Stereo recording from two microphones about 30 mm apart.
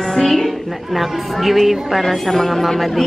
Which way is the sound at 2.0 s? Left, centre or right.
Centre.